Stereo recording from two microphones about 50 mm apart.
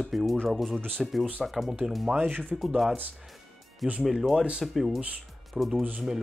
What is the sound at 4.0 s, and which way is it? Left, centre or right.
Speech, centre.